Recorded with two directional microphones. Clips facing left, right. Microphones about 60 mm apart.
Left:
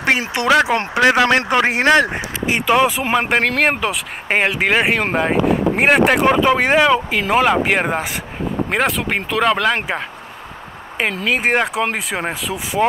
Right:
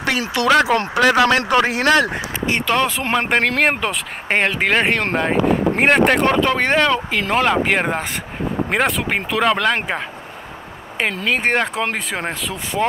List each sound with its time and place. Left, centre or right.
0.0 s speech: left; by 12.8 s centre